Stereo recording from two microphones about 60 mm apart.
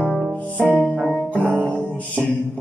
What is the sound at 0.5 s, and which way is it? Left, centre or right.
Music, left.